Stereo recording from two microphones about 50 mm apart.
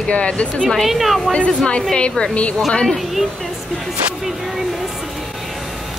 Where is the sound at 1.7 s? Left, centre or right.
Centre.